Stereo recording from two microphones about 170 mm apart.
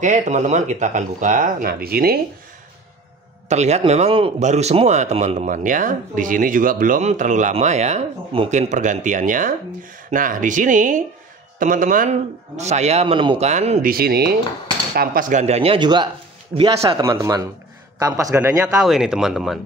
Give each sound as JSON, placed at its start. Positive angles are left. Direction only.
{"t": 0.0, "sound": "speech", "side_deg": -45}
{"t": 3.4, "sound": "a man's voice", "side_deg": -40}
{"t": 13.5, "sound": "speech", "side_deg": -40}
{"t": 13.8, "sound": "speech", "side_deg": -65}
{"t": 15.0, "sound": "a man's voice", "side_deg": -50}
{"t": 17.0, "sound": "speech", "side_deg": -20}
{"t": 18.8, "sound": "speech", "side_deg": -5}